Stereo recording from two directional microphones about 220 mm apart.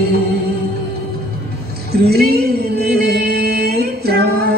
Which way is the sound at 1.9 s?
45° right (ahead or behind).